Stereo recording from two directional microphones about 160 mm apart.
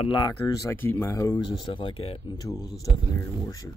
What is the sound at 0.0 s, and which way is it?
Speech, 30° left (ahead or behind).